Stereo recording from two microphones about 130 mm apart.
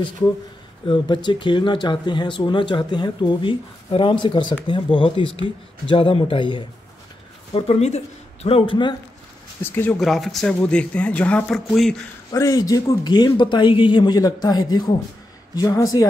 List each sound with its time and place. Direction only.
0.8 s speech: 40° left (ahead or behind)
9.6 s speech: 15° left (ahead or behind)
9.9 s speech: centre (ahead or behind)
12.3 s speech: 25° left (ahead or behind)